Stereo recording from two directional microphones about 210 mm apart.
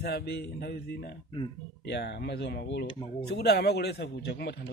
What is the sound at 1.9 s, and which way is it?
A man's voice, 55° left (ahead or behind).